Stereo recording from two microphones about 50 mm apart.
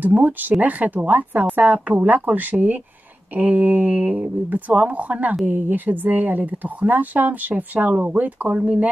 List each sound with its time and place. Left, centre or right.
0.0 s speech: right
5.4 s speech: right